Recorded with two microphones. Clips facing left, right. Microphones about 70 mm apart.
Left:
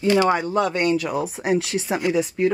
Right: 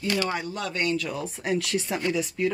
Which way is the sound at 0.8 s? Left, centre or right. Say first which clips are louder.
Left 7 dB; left.